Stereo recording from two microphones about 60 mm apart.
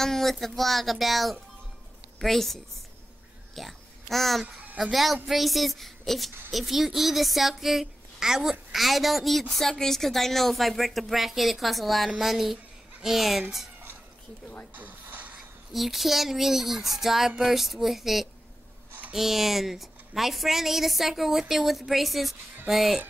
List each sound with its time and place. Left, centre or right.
0.0 s a child's voice: centre
14.7 s a sound: right
15.7 s speech: centre